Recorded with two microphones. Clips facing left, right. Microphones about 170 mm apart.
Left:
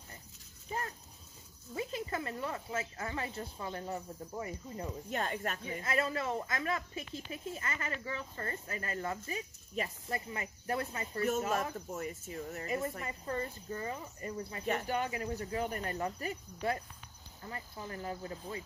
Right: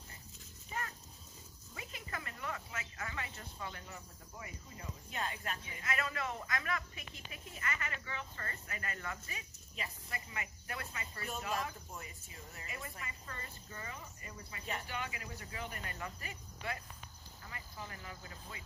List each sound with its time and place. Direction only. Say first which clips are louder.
1.8 s speech: left 10 dB; 30° left (ahead or behind)
5.8 s speech: left 5 dB; 35° left (ahead or behind)